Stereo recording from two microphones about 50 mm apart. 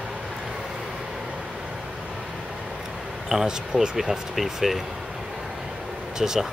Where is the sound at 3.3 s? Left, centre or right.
Centre.